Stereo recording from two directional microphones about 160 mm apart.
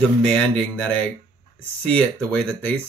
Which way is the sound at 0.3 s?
10° left (ahead or behind).